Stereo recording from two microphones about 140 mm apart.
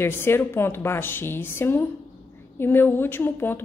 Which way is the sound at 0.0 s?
15° left (ahead or behind).